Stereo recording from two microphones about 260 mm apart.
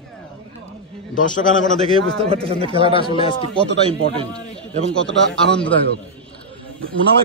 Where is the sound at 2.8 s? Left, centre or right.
Centre.